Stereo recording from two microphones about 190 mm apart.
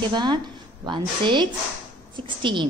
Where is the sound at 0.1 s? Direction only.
25° right (ahead or behind).